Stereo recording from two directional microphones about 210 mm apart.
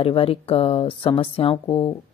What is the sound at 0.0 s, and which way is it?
Speech, 25° left (ahead or behind).